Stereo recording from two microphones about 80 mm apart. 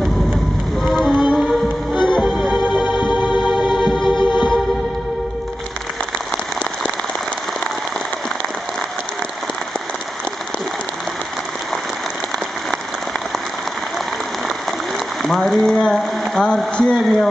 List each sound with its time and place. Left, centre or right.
0.8 s music: centre
2.1 s organ: centre
2.9 s organ: left
3.3 s organ: centre
15.2 s a sound: centre